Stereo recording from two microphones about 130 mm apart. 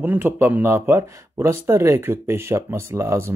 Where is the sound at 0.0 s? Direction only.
15° right (ahead or behind).